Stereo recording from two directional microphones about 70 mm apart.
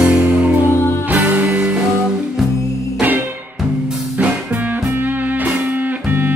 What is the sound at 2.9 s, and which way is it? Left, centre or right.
Music, right.